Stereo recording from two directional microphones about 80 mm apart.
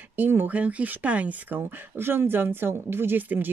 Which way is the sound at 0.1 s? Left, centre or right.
Right.